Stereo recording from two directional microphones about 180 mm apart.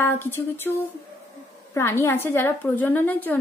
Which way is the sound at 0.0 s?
10° left (ahead or behind).